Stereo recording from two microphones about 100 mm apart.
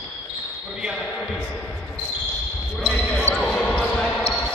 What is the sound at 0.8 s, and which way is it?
Speech, 5° right (ahead or behind).